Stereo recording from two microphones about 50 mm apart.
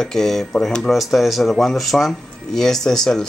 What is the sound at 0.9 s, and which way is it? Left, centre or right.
Speech, centre.